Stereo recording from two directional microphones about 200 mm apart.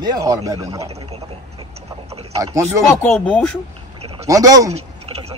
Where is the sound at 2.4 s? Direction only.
15° right (ahead or behind).